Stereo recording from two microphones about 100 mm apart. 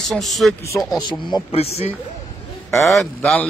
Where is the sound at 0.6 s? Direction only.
30° left (ahead or behind).